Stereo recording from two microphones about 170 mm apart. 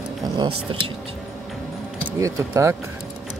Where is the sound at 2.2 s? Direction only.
20° right (ahead or behind).